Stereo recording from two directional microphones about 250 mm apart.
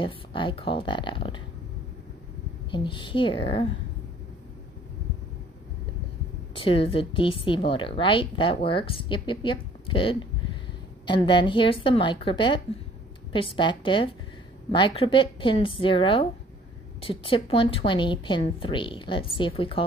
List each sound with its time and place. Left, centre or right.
0.0 s a woman's voice: centre
2.7 s a woman's voice: centre
6.5 s a woman's voice: left